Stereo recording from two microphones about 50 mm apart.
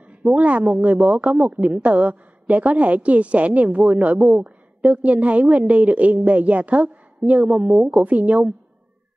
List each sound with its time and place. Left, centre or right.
0.2 s a woman's voice: right